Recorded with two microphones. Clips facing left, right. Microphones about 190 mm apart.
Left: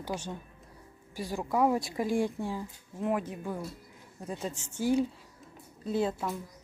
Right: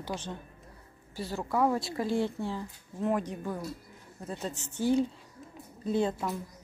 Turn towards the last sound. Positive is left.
turn(degrees=5)  # may be behind; listen again after turning